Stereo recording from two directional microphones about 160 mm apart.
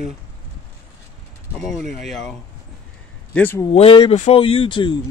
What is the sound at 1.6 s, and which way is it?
Speech, centre (ahead or behind).